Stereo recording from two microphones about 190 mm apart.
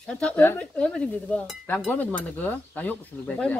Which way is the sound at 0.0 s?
5° left (ahead or behind).